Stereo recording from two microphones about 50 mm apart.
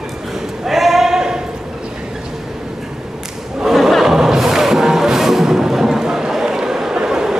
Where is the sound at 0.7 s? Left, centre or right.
Centre.